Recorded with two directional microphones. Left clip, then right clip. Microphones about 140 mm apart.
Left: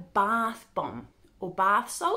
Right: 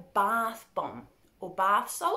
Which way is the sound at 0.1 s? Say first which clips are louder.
Left 1 dB; 25° left (ahead or behind).